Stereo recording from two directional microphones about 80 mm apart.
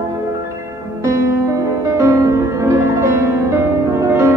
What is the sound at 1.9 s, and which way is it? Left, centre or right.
Music, right.